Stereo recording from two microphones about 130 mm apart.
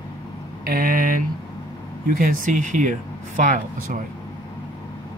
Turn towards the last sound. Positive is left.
turn(degrees=-75)  # may be behind; listen again after turning